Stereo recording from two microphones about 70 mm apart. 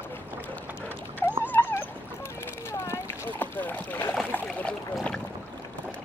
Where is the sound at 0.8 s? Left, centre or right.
Left.